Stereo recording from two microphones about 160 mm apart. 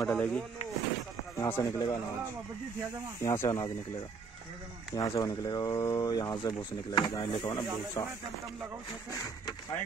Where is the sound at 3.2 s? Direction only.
15° left (ahead or behind).